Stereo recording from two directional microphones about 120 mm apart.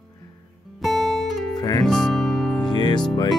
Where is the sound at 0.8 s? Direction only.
Centre (ahead or behind).